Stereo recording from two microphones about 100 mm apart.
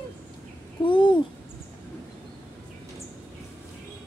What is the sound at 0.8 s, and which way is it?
Speech, 60° left (ahead or behind).